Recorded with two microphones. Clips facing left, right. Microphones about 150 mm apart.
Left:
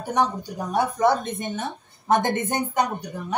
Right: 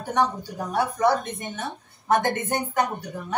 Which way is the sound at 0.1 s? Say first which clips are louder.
Even; 20° left (ahead or behind).